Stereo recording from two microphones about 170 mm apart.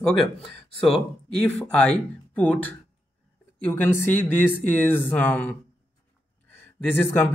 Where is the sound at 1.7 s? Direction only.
5° left (ahead or behind).